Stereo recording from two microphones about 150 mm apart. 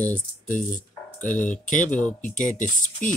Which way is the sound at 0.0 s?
10° left (ahead or behind).